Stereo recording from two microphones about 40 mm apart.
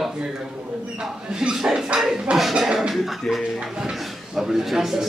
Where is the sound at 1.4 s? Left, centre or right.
Right.